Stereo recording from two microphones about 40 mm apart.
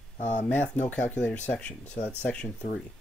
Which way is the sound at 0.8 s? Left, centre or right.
Left.